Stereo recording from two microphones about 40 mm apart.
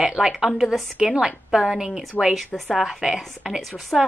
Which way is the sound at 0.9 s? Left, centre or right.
Right.